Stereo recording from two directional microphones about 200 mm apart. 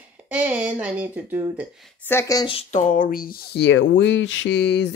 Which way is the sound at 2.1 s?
15° left (ahead or behind).